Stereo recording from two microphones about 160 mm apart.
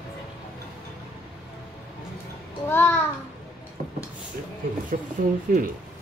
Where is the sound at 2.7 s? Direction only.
15° left (ahead or behind).